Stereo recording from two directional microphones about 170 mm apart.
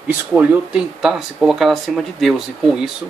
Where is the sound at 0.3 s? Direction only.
5° right (ahead or behind).